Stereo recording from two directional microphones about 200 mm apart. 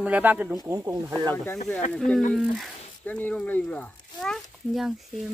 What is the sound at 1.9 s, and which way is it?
Speech, 5° left (ahead or behind).